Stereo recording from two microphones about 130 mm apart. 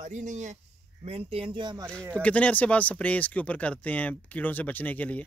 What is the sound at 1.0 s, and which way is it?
Speech, 50° right (ahead or behind).